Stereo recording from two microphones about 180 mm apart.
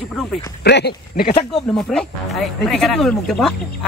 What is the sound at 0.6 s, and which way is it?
Speech, 65° left (ahead or behind).